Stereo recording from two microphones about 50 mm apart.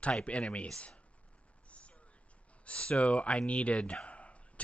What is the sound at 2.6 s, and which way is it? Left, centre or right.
Speech, left.